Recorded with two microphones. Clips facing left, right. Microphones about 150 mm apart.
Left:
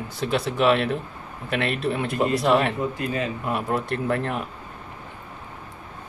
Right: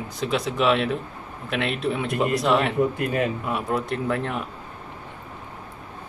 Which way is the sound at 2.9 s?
55° right (ahead or behind).